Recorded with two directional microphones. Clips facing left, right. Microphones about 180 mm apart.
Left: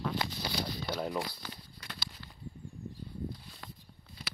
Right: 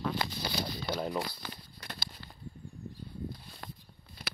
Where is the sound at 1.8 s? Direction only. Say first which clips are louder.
Right 3 dB; 50° right (ahead or behind).